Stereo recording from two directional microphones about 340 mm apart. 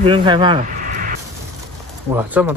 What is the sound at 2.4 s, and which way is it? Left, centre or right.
Speech, centre.